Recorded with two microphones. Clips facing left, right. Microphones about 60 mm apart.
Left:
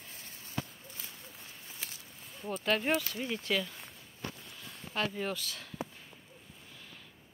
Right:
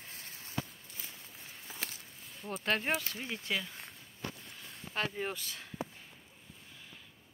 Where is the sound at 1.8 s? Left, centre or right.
Right.